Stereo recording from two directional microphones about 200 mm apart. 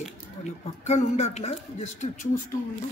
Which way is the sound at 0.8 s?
35° left (ahead or behind).